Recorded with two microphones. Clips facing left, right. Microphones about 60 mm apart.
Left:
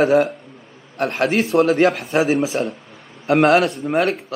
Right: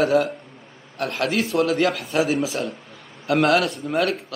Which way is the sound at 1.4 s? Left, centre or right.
Left.